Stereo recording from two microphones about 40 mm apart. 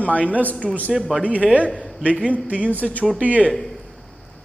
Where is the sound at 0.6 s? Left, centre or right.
Centre.